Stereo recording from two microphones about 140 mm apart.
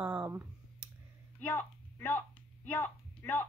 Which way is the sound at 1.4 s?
20° left (ahead or behind).